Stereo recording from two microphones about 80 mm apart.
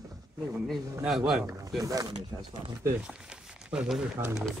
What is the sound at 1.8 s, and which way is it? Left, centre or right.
Speech, right.